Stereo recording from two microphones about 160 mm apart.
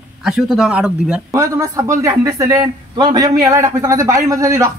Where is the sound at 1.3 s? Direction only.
20° right (ahead or behind).